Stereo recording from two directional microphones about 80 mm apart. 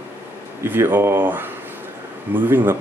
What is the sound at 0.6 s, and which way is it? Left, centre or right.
Speech, right.